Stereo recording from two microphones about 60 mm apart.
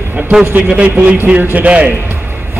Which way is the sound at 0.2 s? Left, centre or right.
Right.